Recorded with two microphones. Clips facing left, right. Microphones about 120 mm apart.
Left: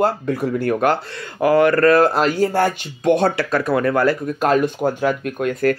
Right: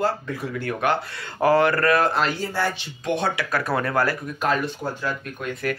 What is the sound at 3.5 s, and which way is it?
Speech, 25° left (ahead or behind).